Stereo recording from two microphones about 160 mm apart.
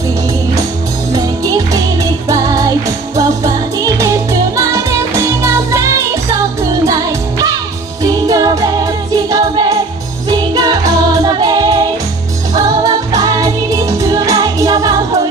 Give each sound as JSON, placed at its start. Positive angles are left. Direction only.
{"t": 1.1, "sound": "music", "side_deg": -25}